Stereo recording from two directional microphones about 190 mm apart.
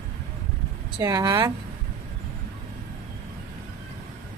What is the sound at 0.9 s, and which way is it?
Speech, 20° right (ahead or behind).